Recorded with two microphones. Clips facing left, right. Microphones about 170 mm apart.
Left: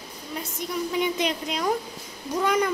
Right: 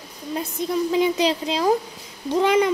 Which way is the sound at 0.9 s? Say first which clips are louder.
Right 5 dB; 30° right (ahead or behind).